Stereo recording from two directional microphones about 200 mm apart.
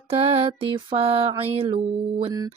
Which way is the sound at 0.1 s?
30° right (ahead or behind).